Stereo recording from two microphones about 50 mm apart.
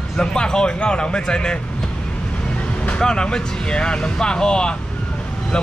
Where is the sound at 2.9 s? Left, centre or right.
Centre.